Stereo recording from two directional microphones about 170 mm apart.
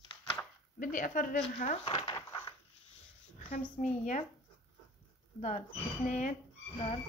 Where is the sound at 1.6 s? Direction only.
40° left (ahead or behind).